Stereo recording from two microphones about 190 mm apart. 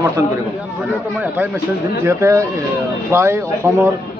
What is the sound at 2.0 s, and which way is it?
A man's voice, 15° right (ahead or behind).